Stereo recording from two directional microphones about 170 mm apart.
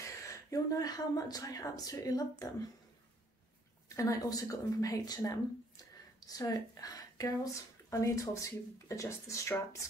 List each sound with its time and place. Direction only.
0.0 s speech: 20° left (ahead or behind)
3.9 s a woman's voice: 20° left (ahead or behind)